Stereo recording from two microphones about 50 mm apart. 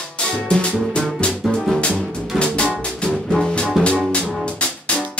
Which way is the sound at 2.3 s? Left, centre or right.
Left.